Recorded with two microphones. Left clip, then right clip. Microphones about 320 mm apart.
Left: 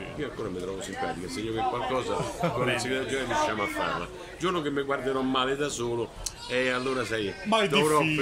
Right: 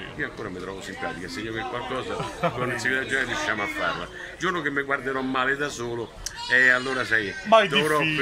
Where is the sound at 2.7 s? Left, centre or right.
Centre.